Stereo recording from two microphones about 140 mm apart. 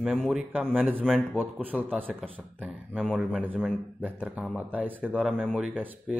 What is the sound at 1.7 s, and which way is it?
Speech, 10° right (ahead or behind).